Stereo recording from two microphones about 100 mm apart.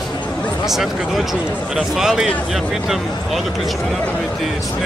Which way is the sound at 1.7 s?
5° right (ahead or behind).